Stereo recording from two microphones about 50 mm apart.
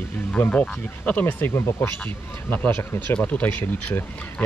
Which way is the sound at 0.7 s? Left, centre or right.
Left.